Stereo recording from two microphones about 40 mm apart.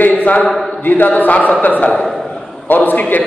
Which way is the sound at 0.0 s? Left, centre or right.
Left.